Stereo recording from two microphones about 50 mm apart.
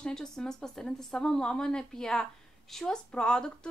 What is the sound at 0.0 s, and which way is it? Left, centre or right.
A woman's voice, centre.